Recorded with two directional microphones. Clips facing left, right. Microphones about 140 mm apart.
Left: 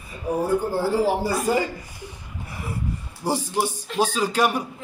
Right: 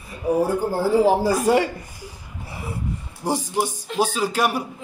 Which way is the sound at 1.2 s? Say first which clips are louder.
Right 4 dB; 80° right.